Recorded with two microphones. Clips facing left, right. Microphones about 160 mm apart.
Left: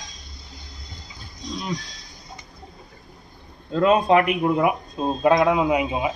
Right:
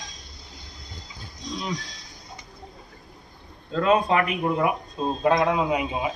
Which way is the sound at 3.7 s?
20° left (ahead or behind).